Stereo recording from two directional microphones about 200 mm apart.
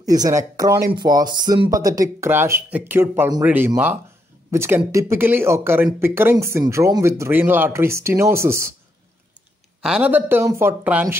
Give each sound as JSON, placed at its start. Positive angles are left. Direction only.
{"t": 0.0, "sound": "speech", "side_deg": -20}
{"t": 9.8, "sound": "speech", "side_deg": -5}